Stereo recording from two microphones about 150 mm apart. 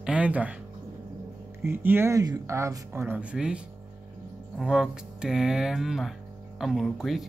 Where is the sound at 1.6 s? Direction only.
15° right (ahead or behind).